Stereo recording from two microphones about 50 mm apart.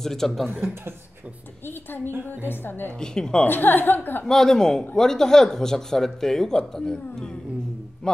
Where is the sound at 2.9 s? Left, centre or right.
Centre.